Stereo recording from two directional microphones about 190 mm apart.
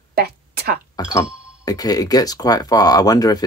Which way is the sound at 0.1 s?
55° right (ahead or behind).